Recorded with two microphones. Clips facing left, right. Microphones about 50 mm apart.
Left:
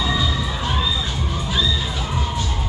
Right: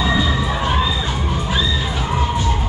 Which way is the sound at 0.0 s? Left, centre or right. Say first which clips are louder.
Right 4 dB; right.